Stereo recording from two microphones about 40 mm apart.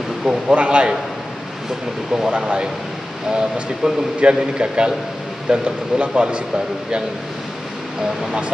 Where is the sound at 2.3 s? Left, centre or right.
Right.